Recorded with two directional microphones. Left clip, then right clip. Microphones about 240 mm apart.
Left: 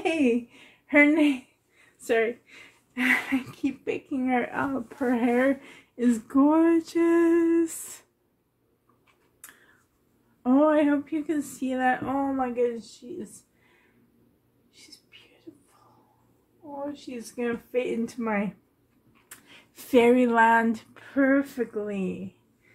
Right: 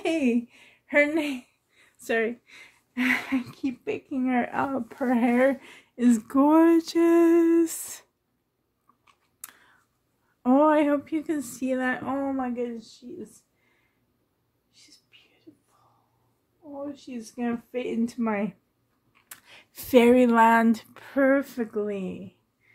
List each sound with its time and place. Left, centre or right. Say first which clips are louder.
0.0 s speech: left 1 dB; right
9.0 s tick-tock: right 2 dB; right
10.4 s speech: right 1 dB; right
16.9 s speech: left 2 dB; right
19.2 s speech: right 1 dB; right